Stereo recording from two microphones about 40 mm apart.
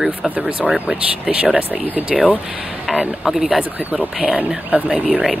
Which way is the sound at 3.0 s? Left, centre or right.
Centre.